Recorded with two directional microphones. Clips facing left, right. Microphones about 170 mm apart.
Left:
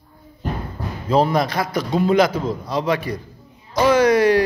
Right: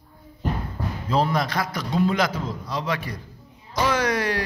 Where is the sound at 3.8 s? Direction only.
10° left (ahead or behind).